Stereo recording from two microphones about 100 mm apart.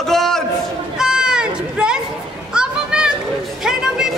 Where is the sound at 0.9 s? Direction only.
5° right (ahead or behind).